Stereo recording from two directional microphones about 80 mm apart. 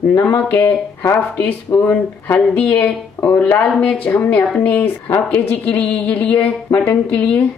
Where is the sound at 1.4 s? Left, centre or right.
Centre.